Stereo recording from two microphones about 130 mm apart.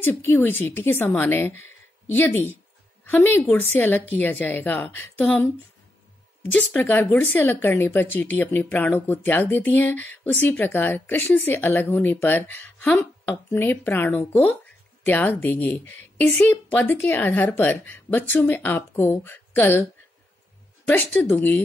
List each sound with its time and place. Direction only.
0.0 s a woman's voice: 15° left (ahead or behind)
6.4 s speech: 10° left (ahead or behind)
20.9 s speech: 15° left (ahead or behind)